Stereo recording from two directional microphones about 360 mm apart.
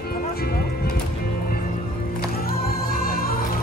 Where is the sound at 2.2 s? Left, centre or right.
Left.